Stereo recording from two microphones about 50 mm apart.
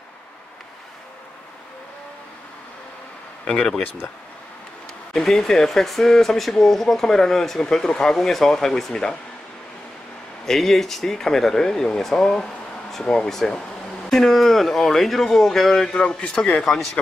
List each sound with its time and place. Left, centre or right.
3.4 s speech: centre
5.1 s speech: centre
10.4 s speech: centre
13.3 s speech: centre
16.7 s speech: centre